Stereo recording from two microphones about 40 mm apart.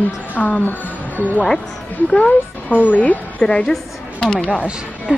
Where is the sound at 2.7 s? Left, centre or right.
Left.